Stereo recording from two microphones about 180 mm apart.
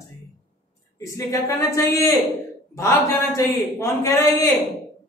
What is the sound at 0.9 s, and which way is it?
A woman's voice, 15° left (ahead or behind).